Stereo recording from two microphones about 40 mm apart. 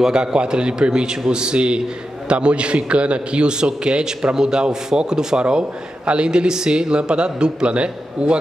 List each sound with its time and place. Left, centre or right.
0.0 s a man's voice: centre